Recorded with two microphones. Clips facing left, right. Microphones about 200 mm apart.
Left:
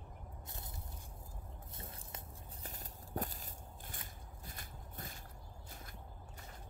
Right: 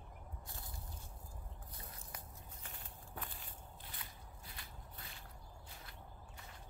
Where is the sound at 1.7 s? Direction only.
25° left (ahead or behind).